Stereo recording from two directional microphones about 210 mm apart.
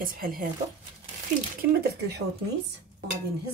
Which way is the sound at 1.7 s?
50° right (ahead or behind).